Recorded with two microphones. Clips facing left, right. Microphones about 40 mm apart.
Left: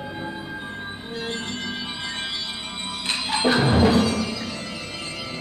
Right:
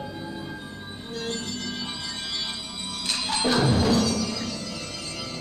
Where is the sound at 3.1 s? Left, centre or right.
Left.